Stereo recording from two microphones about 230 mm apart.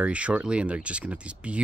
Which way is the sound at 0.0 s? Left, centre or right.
Centre.